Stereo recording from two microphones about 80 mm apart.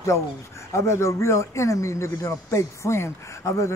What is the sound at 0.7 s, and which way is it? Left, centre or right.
A man's voice, left.